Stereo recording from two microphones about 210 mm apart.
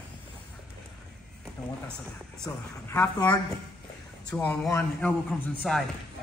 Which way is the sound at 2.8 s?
10° left (ahead or behind).